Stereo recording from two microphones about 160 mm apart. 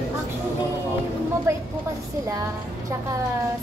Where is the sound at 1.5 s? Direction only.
15° right (ahead or behind).